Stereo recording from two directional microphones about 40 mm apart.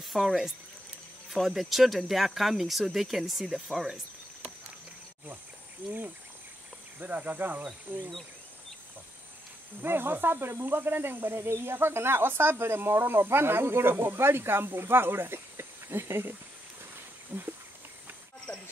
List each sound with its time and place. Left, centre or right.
0.0 s speech: centre
7.0 s speech: right
9.8 s speech: right
17.3 s a sound: right
18.5 s cricket: left